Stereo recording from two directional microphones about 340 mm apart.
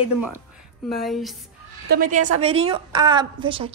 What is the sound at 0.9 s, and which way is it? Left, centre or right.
Speech, centre.